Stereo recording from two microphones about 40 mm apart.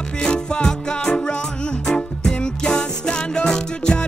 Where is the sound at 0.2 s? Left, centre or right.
Left.